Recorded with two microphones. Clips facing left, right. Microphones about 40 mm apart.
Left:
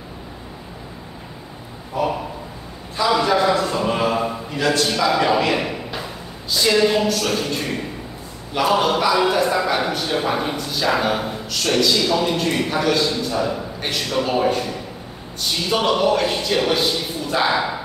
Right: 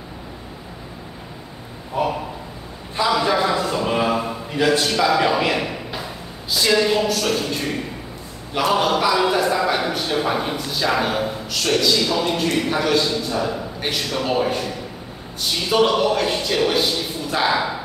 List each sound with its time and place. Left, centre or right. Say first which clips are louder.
2.0 s a man's voice: even; right
3.2 s a sound: left 2 dB; centre
4.7 s a man's voice: even; centre